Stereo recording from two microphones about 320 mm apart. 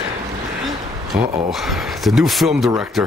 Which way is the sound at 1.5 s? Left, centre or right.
Centre.